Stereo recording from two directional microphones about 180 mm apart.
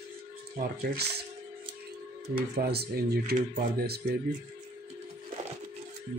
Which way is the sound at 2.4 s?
55° right (ahead or behind).